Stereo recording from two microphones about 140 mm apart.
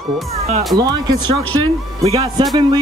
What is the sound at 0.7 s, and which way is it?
Speech, 30° right (ahead or behind).